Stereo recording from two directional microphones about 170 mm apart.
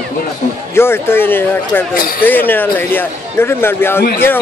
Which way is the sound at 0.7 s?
15° left (ahead or behind).